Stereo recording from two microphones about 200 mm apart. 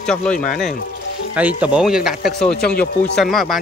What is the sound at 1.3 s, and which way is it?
Speech, 5° right (ahead or behind).